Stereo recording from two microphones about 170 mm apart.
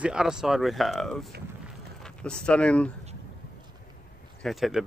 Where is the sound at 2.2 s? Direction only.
5° left (ahead or behind).